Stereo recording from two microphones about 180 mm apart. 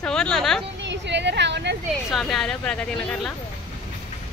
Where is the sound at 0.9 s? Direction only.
75° right (ahead or behind).